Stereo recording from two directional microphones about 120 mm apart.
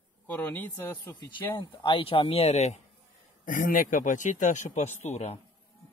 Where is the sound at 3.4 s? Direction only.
90° left; by 5.4 s 70° left (ahead or behind).